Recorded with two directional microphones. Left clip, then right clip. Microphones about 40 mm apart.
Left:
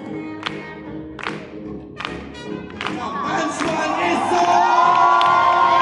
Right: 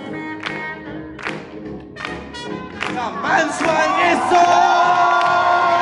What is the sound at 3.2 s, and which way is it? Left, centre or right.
Speech, right.